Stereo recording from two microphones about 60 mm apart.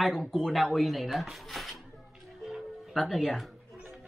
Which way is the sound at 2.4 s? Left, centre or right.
Centre.